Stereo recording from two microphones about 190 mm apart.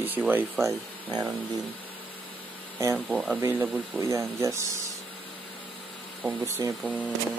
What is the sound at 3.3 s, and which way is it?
Speech, 15° right (ahead or behind).